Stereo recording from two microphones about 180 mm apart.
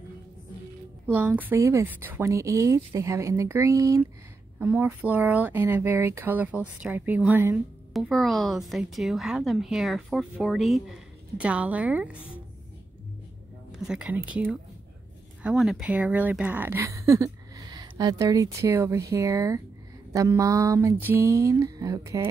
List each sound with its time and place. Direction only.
1.0 s a woman's voice: 10° right (ahead or behind)
13.7 s speech: 5° right (ahead or behind)